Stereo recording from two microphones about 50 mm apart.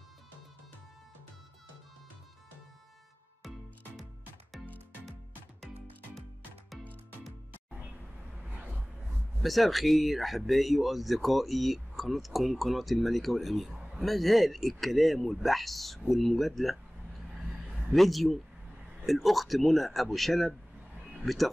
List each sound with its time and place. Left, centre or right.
3.4 s music: centre
8.4 s vehicle: right
9.4 s speech: centre
17.9 s speech: centre